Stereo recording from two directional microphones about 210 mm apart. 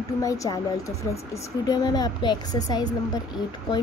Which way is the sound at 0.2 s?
15° left (ahead or behind).